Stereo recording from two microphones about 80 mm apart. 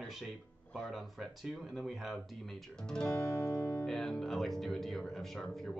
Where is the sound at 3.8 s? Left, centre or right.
Centre.